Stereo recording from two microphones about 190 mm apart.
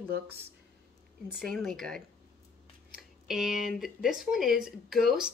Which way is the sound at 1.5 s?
Centre (ahead or behind).